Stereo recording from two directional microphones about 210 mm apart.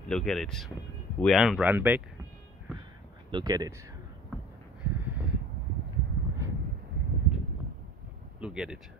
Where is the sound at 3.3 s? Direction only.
20° right (ahead or behind).